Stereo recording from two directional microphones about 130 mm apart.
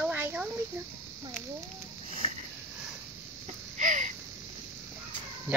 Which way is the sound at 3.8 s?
65° right (ahead or behind).